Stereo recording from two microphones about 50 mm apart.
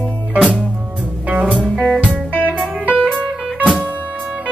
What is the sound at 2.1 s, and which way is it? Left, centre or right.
Music, right.